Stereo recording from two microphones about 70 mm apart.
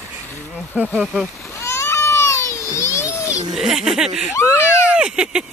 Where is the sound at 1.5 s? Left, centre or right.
Left.